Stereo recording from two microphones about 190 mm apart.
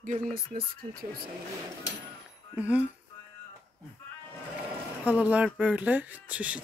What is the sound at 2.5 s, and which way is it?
Speech, 5° right (ahead or behind).